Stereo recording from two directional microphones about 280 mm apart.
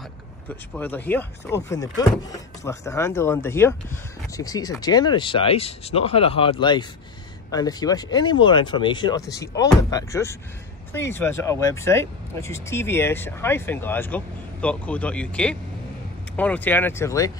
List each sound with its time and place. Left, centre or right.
0.5 s speech: centre